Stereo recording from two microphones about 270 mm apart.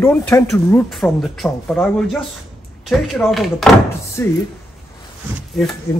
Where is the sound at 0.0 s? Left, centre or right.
Centre.